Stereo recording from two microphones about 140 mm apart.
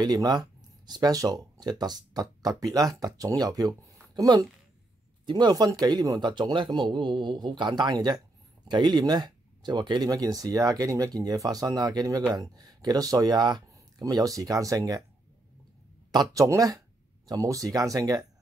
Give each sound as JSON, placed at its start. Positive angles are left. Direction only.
{"t": 0.0, "sound": "speech", "side_deg": -30}
{"t": 16.1, "sound": "speech", "side_deg": -25}